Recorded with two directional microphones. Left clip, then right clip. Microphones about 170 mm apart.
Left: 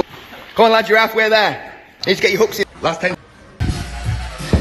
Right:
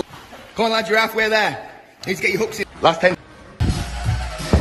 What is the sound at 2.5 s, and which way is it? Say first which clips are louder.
Speech: right 2 dB; 10° right (ahead or behind).